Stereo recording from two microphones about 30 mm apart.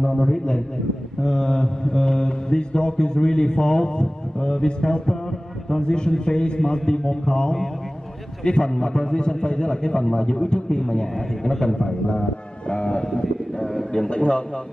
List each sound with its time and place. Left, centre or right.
0.0 s a man's voice: centre
1.2 s mantra: left
13.6 s a man's voice: left